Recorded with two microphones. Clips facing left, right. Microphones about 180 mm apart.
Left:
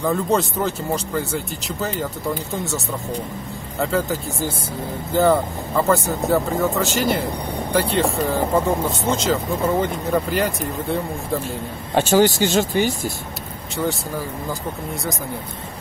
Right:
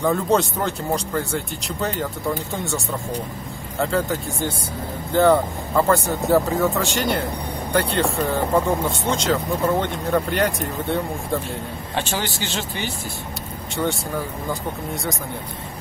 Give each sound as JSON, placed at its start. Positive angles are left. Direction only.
{"t": 0.0, "sound": "speech", "side_deg": 0}
{"t": 3.8, "sound": "speech", "side_deg": 0}
{"t": 12.1, "sound": "speech", "side_deg": 45}
{"t": 13.7, "sound": "speech", "side_deg": 0}